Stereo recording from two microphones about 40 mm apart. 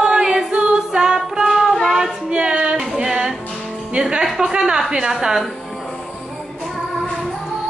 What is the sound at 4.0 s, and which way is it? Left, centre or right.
Music, right.